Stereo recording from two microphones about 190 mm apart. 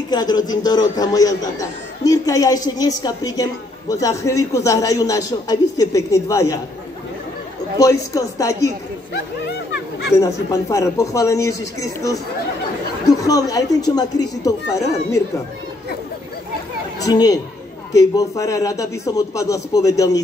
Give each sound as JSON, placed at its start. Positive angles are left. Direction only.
{"t": 0.1, "sound": "a man's voice", "side_deg": 20}
{"t": 7.8, "sound": "a man's voice", "side_deg": 15}
{"t": 10.1, "sound": "a man's voice", "side_deg": 15}
{"t": 13.2, "sound": "a man's voice", "side_deg": 20}
{"t": 17.0, "sound": "a man's voice", "side_deg": 20}